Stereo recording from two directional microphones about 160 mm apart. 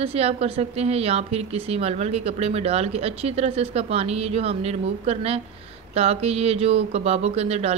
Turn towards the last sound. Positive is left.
turn(degrees=-40)  # may be behind; listen again after turning